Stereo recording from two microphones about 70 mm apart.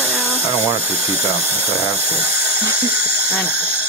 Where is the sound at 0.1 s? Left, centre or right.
Right.